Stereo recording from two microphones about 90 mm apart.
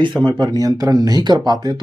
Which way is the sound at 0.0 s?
55° right (ahead or behind).